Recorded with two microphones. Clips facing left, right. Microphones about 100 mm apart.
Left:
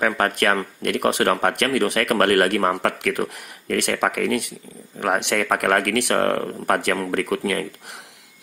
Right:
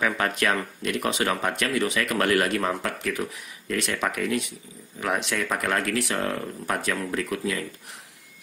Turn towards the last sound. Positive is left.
turn(degrees=60)  # may be behind; listen again after turning